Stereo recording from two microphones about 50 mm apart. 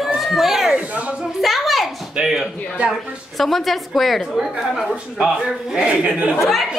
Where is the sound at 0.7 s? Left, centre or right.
Right.